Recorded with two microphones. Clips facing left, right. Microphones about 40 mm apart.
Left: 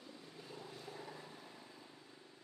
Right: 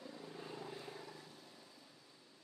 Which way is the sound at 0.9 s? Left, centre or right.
Centre.